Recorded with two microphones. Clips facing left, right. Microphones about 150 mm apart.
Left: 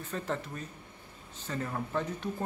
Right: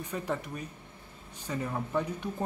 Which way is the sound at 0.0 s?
15° right (ahead or behind).